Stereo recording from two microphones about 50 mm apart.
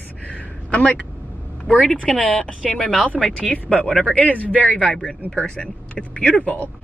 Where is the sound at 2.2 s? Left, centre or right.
Left.